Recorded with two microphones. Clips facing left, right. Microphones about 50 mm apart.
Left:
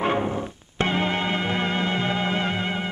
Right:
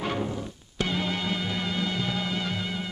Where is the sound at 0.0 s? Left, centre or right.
Left.